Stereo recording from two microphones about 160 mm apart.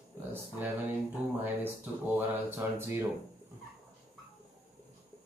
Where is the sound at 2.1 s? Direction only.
15° right (ahead or behind).